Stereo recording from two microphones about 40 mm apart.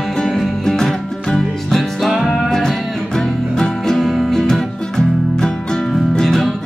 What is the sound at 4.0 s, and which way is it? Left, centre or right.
Music, centre.